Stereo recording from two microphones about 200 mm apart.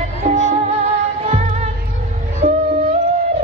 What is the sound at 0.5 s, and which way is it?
Music, 35° right (ahead or behind).